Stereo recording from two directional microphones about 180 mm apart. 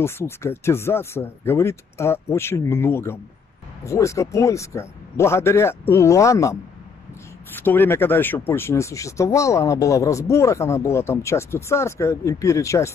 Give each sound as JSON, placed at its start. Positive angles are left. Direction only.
{"t": 0.0, "sound": "speech", "side_deg": 15}